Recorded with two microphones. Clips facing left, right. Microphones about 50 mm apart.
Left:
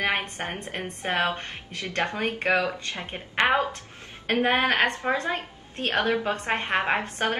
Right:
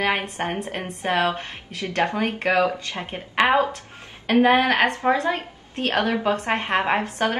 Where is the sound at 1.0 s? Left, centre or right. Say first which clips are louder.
Right 4 dB; right.